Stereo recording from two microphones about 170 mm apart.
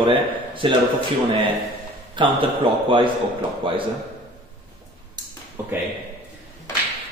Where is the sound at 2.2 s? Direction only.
30° right (ahead or behind).